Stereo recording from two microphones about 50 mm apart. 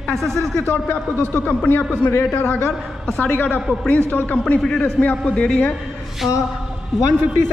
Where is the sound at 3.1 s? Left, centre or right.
Left.